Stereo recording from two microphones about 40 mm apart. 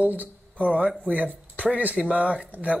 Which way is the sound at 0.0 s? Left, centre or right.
Right.